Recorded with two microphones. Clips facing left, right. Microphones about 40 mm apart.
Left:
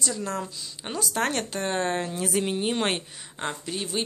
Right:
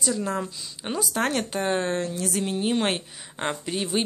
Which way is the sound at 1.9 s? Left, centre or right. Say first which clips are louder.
Even; centre.